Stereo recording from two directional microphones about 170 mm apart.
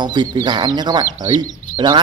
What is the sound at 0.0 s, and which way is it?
A man's voice, 25° right (ahead or behind).